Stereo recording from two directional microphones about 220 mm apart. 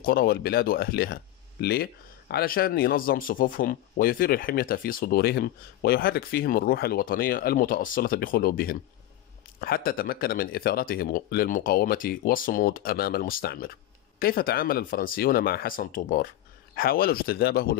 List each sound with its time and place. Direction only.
0.0 s speech: 45° left (ahead or behind)